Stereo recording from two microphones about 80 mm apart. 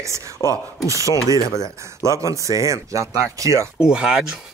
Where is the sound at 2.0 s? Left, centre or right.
Right.